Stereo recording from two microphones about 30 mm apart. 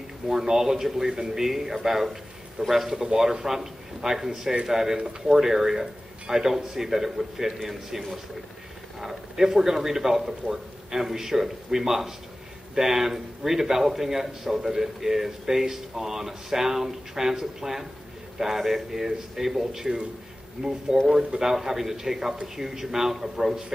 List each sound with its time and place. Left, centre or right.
0.3 s a man's voice: centre
2.6 s speech: right
3.4 s a man's voice: centre
9.0 s a man's voice: centre
20.6 s speech: centre
21.1 s speech: right
21.5 s a man's voice: centre